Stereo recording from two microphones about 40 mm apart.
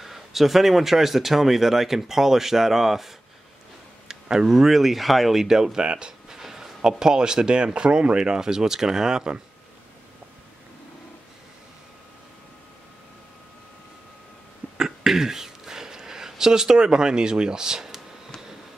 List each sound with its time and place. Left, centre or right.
0.0 s speech: centre
4.1 s speech: centre
14.8 s a sound: centre